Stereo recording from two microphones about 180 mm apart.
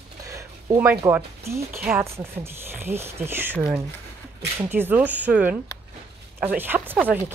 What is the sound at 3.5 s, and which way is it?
Speech, centre (ahead or behind).